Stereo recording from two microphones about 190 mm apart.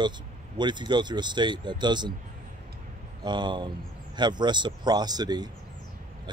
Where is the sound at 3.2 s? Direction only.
25° right (ahead or behind).